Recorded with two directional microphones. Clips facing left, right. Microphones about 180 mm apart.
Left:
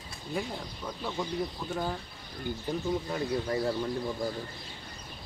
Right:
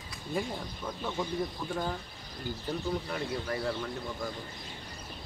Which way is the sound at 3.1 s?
25° left (ahead or behind).